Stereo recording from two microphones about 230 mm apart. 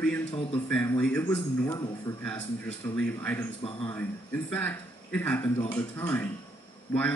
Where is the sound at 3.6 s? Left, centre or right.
Left.